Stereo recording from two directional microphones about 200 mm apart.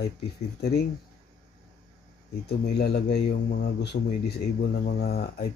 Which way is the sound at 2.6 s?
50° left (ahead or behind).